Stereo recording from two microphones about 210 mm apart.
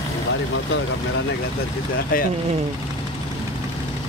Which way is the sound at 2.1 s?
45° left (ahead or behind).